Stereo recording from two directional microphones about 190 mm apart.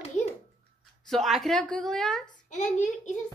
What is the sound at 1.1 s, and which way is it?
Speech, centre (ahead or behind).